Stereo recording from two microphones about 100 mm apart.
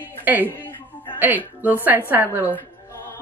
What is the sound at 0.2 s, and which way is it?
Speech, 20° right (ahead or behind).